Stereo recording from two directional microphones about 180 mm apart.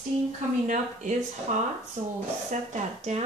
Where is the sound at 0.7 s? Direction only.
45° right (ahead or behind).